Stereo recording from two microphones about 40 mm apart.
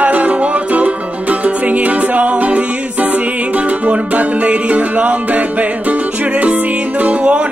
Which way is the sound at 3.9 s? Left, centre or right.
Right.